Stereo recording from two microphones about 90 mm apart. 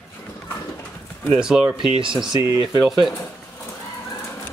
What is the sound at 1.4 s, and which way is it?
Speech, 5° right (ahead or behind).